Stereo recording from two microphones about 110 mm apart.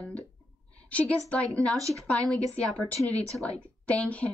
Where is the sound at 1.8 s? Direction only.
30° right (ahead or behind).